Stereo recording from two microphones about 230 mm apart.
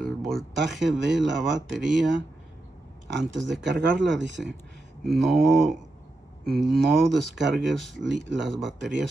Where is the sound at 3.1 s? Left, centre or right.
Right.